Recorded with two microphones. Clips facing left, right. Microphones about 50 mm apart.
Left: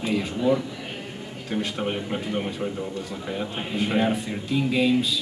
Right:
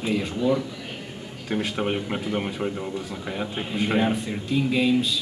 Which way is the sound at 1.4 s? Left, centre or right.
Centre.